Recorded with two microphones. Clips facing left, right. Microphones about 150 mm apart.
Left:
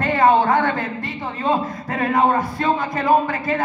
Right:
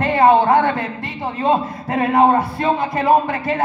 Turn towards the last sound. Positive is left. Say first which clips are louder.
# right 2 dB
turn(degrees=-30)  # may be behind; listen again after turning